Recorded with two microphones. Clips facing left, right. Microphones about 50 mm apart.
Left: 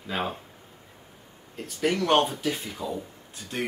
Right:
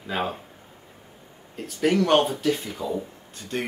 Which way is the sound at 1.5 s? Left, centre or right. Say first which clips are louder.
Right 4 dB; centre.